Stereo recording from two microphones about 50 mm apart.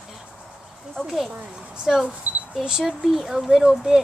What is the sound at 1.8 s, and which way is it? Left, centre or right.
Speech, centre.